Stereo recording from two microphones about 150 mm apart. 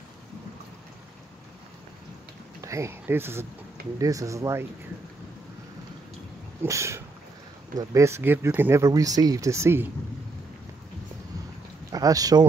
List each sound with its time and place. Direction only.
2.6 s speech: 20° right (ahead or behind)
6.6 s speech: 20° right (ahead or behind)
11.9 s speech: 25° right (ahead or behind)